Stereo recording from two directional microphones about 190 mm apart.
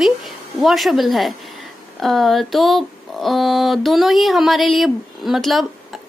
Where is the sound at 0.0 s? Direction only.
Centre (ahead or behind).